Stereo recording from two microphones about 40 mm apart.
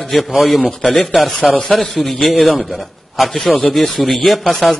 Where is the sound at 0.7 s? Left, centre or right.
Centre.